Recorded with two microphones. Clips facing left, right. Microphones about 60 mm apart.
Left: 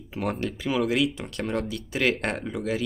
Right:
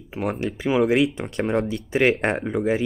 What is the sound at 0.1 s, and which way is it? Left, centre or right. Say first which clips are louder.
Speech: right 3 dB; centre.